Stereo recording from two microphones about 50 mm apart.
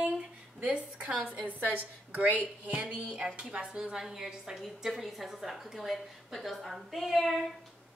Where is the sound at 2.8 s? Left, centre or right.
Centre.